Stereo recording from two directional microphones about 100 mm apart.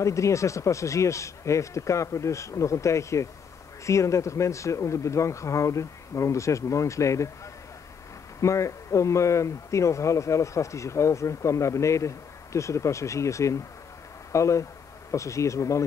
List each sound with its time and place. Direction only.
0.0 s speech: 30° left (ahead or behind)
8.4 s speech: 30° left (ahead or behind)